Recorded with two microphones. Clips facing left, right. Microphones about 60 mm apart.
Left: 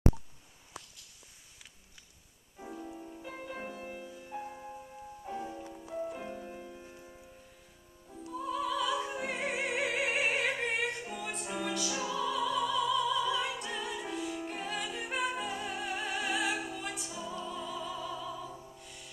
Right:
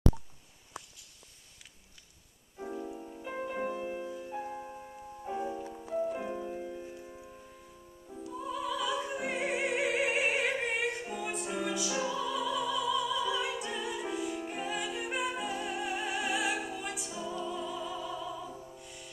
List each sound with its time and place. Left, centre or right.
2.6 s music: centre
3.3 s music: centre
4.2 s music: centre
6.8 s music: centre
8.3 s music: centre